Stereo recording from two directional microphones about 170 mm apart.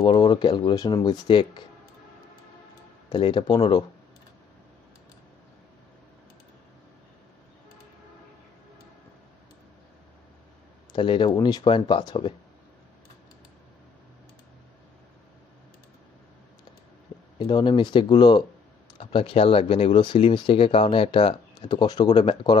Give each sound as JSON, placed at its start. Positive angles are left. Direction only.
{"t": 0.0, "sound": "speech", "side_deg": 25}
{"t": 3.1, "sound": "speech", "side_deg": 30}
{"t": 10.9, "sound": "speech", "side_deg": 30}
{"t": 17.4, "sound": "speech", "side_deg": 25}